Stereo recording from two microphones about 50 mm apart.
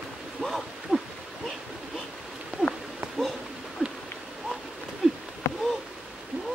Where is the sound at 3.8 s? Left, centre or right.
Centre.